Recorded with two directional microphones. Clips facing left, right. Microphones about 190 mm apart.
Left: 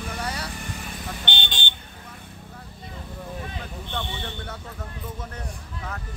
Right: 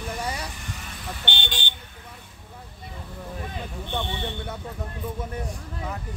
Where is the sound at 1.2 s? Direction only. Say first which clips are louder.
Even; 20° left (ahead or behind).